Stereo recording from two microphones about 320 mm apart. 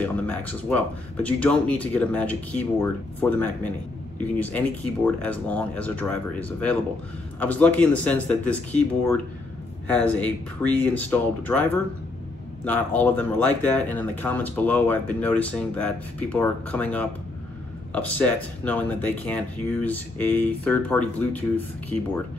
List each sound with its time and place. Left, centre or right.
0.0 s speech: centre
7.3 s speech: centre